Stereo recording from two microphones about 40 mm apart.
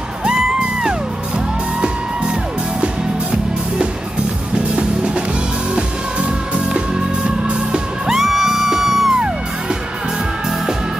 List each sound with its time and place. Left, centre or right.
0.3 s music: centre
2.8 s music: right
8.1 s music: centre